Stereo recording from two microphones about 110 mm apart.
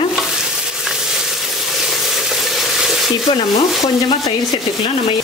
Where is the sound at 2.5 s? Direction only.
Centre (ahead or behind).